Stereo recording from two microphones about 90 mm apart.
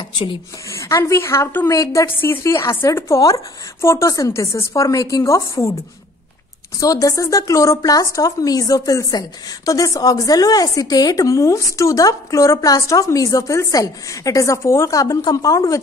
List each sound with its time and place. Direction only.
0.7 s a woman's voice: 35° left (ahead or behind)
6.8 s speech: 40° left (ahead or behind)